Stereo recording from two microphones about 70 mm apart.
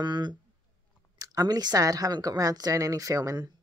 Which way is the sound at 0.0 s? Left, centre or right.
Right.